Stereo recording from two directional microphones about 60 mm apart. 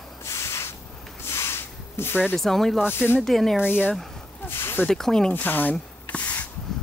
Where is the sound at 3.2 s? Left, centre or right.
Centre.